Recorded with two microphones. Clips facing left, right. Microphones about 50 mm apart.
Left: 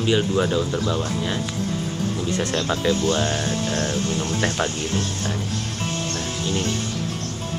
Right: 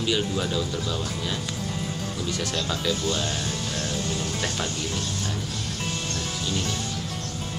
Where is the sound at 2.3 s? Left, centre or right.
Left.